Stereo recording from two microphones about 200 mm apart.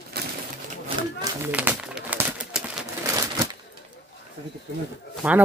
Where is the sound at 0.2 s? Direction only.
55° right (ahead or behind).